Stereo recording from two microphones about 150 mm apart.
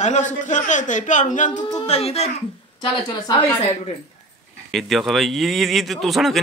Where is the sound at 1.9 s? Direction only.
45° left (ahead or behind).